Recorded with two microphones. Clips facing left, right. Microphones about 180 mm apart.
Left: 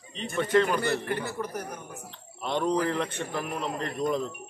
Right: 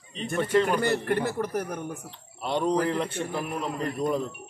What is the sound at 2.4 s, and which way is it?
A man's voice, 10° right (ahead or behind).